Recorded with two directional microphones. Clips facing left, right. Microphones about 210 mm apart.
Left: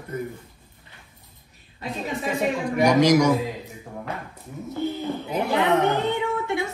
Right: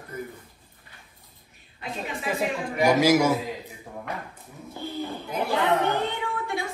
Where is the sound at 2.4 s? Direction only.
5° right (ahead or behind).